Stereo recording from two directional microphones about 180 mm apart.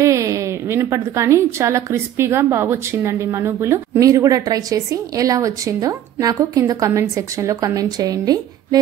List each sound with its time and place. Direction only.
0.0 s a woman's voice: 15° right (ahead or behind)